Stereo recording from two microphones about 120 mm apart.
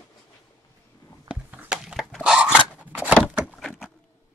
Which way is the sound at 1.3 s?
10° right (ahead or behind).